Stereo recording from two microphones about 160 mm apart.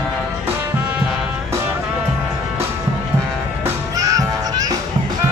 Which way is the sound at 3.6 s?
20° right (ahead or behind).